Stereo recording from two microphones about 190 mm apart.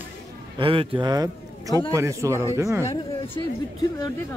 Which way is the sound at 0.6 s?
25° right (ahead or behind).